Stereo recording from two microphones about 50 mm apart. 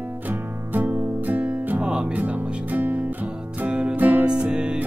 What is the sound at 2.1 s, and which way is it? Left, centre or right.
Music, right.